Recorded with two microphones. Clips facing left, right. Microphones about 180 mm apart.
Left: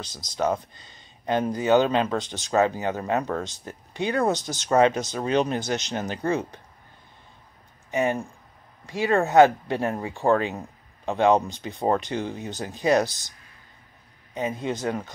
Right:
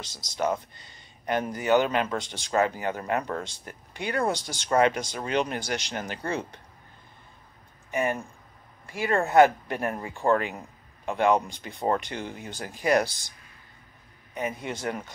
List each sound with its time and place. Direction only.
0.4 s speech: 20° left (ahead or behind)
7.9 s speech: 20° left (ahead or behind)
14.3 s speech: 20° left (ahead or behind)